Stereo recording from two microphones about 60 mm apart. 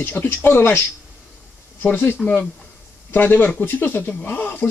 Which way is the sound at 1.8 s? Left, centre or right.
Left.